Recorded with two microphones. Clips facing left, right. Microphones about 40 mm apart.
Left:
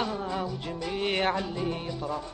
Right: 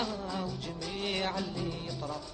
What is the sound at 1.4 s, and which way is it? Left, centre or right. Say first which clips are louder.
Speech: left 5 dB; left.